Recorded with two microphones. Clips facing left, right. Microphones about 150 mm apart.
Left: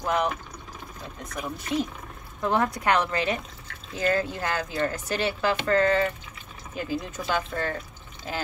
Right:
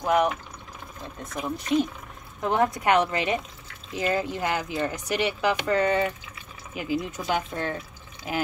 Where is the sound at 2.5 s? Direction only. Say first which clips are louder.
Right 2 dB; 20° right (ahead or behind).